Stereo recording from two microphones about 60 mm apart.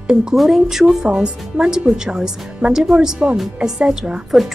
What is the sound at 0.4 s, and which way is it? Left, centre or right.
A woman's voice, centre.